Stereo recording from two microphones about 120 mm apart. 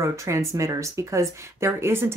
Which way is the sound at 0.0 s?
25° right (ahead or behind).